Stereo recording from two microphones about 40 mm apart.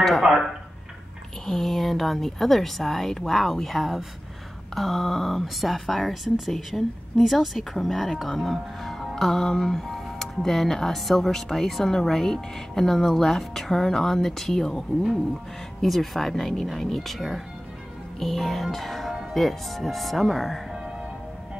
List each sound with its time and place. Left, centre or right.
0.2 s speech: centre
1.4 s speech: centre